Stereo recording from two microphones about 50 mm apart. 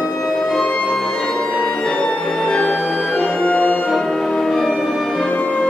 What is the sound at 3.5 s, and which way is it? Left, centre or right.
Music, left.